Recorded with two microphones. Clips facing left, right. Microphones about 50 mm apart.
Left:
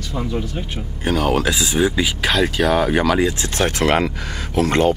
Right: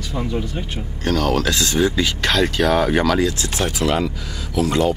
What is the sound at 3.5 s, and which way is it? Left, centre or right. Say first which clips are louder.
Speech: left 5 dB; left.